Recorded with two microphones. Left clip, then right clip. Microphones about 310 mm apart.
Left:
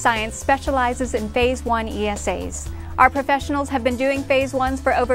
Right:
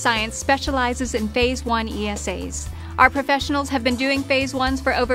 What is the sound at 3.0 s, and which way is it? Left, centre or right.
Speech, left.